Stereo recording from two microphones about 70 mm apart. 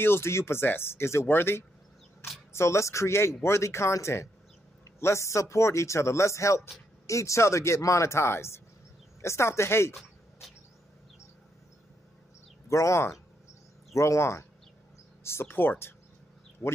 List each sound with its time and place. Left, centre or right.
0.0 s speech: left
12.6 s speech: left